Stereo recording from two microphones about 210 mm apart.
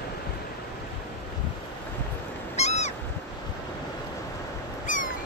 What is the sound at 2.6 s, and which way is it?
Cat, 30° left (ahead or behind).